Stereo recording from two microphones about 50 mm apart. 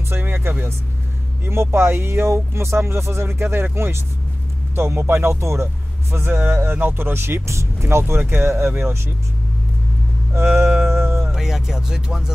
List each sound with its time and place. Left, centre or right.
0.1 s vehicle: right
1.4 s speech: right
6.1 s speech: right
8.2 s speech: right
10.3 s speech: right
10.9 s music: right
11.3 s speech: centre